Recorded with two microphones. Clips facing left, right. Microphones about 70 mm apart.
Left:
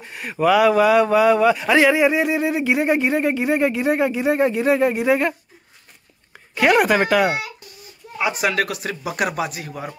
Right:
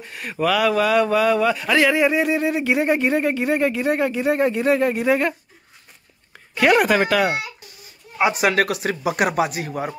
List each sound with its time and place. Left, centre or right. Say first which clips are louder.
0.0 s speech: left 3 dB; centre
6.5 s speech: even; centre
8.2 s speech: right 3 dB; right
8.5 s speech: right 1 dB; right
9.0 s speech: right 3 dB; right
9.7 s speech: right 4 dB; right